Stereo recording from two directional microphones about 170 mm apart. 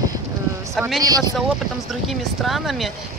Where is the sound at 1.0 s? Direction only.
20° right (ahead or behind).